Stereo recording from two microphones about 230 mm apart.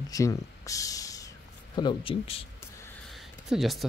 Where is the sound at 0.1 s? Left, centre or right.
Centre.